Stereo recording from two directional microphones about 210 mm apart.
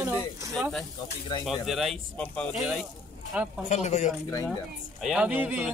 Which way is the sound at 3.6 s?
35° left (ahead or behind).